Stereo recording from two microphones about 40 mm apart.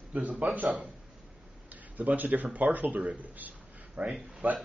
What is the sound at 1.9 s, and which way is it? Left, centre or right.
Speech, right.